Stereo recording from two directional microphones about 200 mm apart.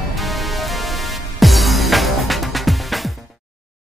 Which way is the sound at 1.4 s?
Centre (ahead or behind).